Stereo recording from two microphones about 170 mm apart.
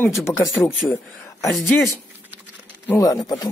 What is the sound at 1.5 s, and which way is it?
Speech, centre (ahead or behind).